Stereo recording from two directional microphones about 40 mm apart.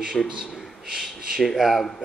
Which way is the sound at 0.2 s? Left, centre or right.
Left.